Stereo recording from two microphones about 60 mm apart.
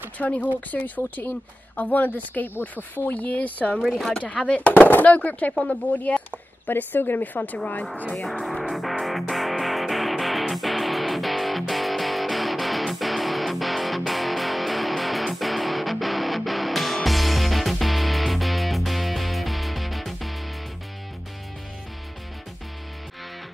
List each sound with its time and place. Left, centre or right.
0.2 s a woman's voice: left
8.2 s music: centre